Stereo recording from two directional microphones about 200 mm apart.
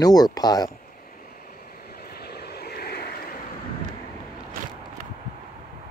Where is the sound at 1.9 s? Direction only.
50° left (ahead or behind).